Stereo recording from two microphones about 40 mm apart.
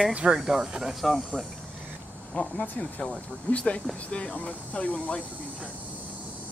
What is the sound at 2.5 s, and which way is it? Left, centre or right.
Speech, left.